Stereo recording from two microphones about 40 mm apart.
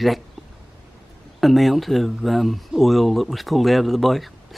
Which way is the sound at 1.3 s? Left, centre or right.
Centre.